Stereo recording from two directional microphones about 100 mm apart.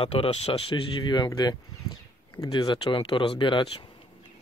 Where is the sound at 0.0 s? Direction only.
75° left (ahead or behind).